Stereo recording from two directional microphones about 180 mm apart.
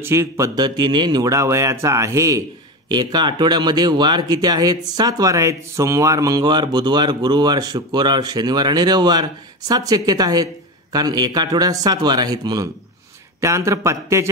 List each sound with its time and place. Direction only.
0.0 s a man's voice: 15° right (ahead or behind)